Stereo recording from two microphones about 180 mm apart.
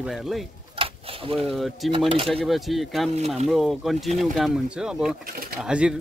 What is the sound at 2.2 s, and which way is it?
Speech, centre (ahead or behind).